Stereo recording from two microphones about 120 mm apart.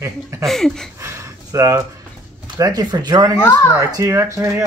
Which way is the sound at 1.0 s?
25° right (ahead or behind).